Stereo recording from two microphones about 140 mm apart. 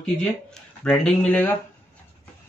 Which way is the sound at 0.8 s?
10° left (ahead or behind).